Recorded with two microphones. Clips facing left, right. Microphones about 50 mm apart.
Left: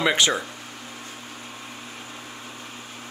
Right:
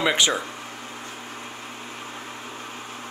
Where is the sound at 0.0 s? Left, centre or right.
Centre.